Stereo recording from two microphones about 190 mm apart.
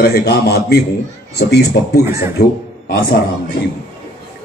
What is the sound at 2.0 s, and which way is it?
Speech, 15° right (ahead or behind).